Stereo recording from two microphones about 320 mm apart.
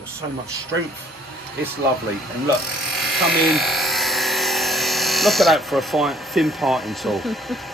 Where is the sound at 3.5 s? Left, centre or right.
Centre.